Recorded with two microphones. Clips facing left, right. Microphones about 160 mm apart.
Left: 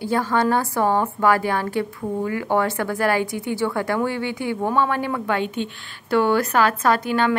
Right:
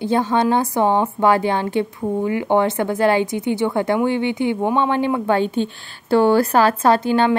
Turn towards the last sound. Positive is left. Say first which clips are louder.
# right 4 dB
turn(degrees=-25)  # may be behind; listen again after turning